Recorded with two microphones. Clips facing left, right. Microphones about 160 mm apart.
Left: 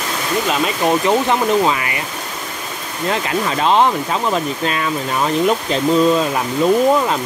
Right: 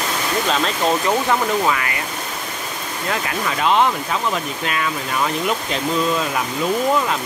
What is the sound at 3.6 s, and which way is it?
Speech, 35° left (ahead or behind).